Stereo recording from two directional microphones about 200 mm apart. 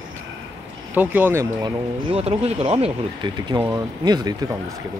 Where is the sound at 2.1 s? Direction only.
30° right (ahead or behind).